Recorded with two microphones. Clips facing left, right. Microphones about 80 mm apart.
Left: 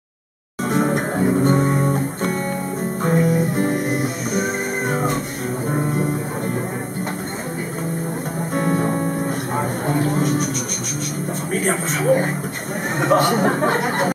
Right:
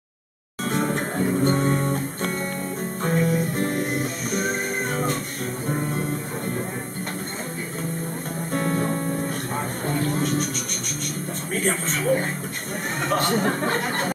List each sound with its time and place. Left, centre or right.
0.9 s music: centre
8.5 s music: centre
9.8 s a sound: centre
11.6 s speech: centre